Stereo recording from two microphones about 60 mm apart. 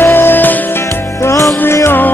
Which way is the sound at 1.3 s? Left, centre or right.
Left.